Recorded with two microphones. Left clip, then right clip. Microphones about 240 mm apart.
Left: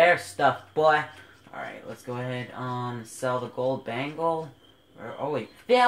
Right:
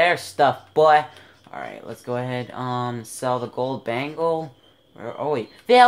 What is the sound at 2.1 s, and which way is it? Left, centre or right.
Speech, right.